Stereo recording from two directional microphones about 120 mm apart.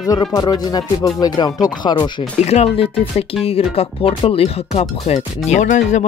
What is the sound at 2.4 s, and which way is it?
Speech, 60° left (ahead or behind).